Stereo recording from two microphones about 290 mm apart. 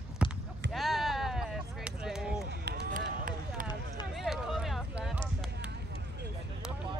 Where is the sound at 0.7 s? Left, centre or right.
Centre.